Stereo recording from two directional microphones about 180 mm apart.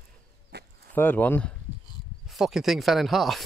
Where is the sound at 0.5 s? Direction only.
65° right (ahead or behind).